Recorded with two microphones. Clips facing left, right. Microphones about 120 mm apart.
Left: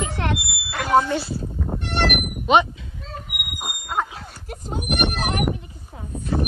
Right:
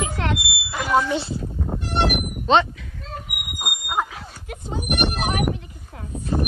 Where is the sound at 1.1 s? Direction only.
20° right (ahead or behind).